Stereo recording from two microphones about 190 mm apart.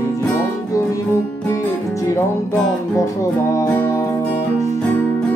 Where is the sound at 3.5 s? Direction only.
15° left (ahead or behind).